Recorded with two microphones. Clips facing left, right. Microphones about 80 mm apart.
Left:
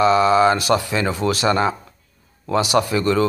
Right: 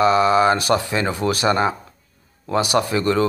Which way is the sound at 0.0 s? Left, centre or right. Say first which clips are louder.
Left 1 dB; right.